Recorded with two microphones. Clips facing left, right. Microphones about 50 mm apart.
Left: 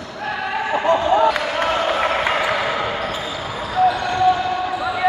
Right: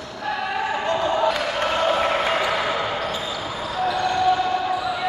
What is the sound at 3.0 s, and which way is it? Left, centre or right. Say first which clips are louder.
Basketball bounce: left 2 dB; centre.